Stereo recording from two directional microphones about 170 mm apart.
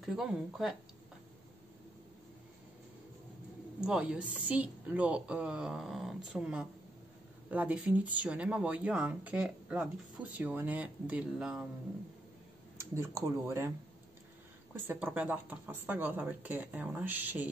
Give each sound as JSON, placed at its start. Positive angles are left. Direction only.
{"t": 0.0, "sound": "a woman's voice", "side_deg": 0}
{"t": 3.8, "sound": "a woman's voice", "side_deg": -5}
{"t": 12.9, "sound": "speech", "side_deg": -15}
{"t": 14.7, "sound": "speech", "side_deg": -10}